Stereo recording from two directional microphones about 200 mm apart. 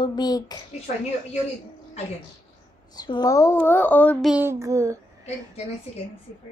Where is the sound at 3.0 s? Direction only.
20° left (ahead or behind).